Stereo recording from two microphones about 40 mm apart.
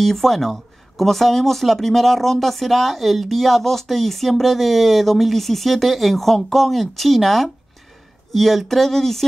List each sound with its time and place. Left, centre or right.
0.0 s speech: centre